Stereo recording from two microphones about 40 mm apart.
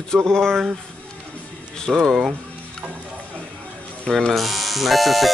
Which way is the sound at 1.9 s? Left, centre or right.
Centre.